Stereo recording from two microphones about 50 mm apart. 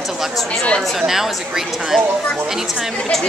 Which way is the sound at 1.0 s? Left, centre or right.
Centre.